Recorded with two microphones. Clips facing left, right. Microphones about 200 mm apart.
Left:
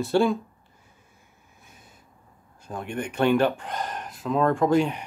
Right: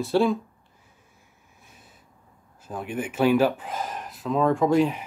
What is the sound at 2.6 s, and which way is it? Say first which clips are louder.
Speech: right 1 dB; 5° right (ahead or behind).